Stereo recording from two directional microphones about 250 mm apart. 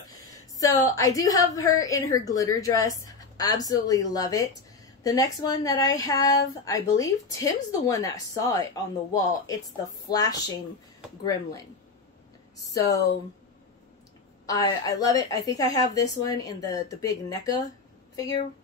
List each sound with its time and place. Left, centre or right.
0.6 s a woman's voice: centre
12.7 s speech: centre
14.4 s speech: centre